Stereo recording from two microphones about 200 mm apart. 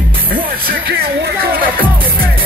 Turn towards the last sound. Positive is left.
turn(degrees=-50)  # may be behind; listen again after turning